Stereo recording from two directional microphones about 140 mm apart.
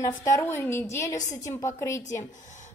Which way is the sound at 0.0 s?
20° left (ahead or behind).